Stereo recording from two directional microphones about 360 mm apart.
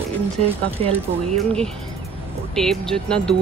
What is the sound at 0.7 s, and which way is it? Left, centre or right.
Speech, centre.